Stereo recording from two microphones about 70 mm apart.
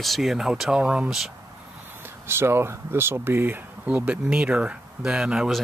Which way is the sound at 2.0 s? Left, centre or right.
Right.